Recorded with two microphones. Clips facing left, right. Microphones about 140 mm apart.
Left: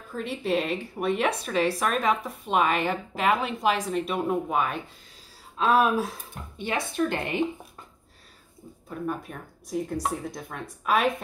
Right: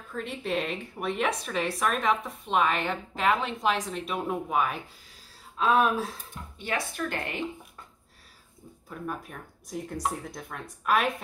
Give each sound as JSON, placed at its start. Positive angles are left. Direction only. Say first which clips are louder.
{"t": 0.1, "sound": "a woman's voice", "louder": "left 4 dB", "side_deg": 5}
{"t": 6.6, "sound": "a woman's voice", "louder": "left 5 dB", "side_deg": 20}
{"t": 8.8, "sound": "a woman's voice", "louder": "left 4 dB", "side_deg": 0}